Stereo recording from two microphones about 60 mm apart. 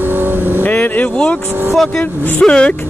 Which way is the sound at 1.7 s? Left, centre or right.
Centre.